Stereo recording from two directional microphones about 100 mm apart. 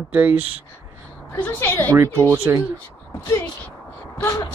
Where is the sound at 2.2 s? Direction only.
30° right (ahead or behind).